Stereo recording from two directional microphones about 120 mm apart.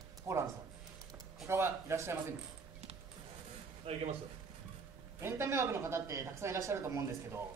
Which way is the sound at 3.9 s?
55° right (ahead or behind).